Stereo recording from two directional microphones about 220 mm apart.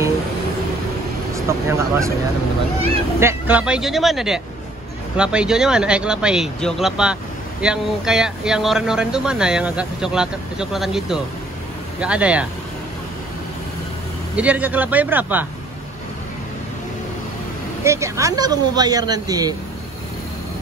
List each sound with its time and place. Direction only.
1.3 s speech: 15° right (ahead or behind)
3.2 s speech: 10° right (ahead or behind)
14.3 s speech: 5° right (ahead or behind)
17.8 s speech: 15° right (ahead or behind)